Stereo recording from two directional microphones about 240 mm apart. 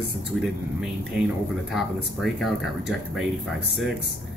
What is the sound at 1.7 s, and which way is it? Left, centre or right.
Speech, centre.